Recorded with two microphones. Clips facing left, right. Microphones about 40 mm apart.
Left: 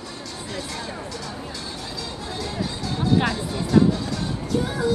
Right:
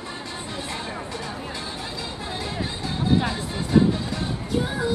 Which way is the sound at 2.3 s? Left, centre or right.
Right.